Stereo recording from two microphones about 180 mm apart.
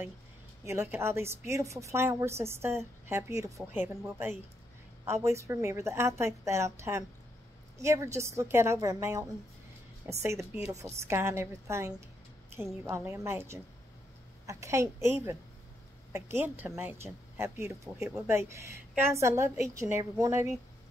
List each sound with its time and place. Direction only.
0.7 s a woman's voice: 15° right (ahead or behind)